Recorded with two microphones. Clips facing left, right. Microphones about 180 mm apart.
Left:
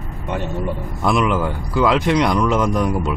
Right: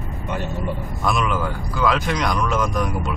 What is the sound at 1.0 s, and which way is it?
Speech, 25° left (ahead or behind).